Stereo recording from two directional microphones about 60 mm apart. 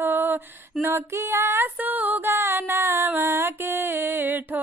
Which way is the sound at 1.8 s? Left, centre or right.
Right.